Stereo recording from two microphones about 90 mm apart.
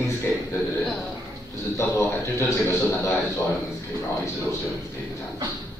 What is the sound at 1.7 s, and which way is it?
A man's voice, 30° left (ahead or behind).